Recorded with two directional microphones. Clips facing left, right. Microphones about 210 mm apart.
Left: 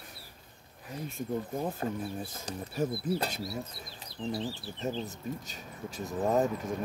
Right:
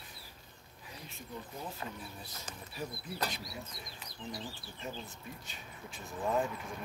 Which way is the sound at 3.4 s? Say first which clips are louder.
Left 8 dB; 30° left (ahead or behind).